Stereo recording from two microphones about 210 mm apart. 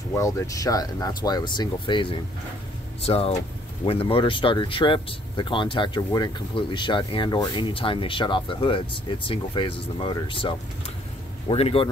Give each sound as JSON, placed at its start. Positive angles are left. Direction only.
{"t": 0.1, "sound": "speech", "side_deg": 15}